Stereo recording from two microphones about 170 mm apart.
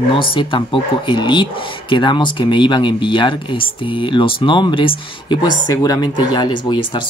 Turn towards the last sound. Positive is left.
turn(degrees=25)  # may be behind; listen again after turning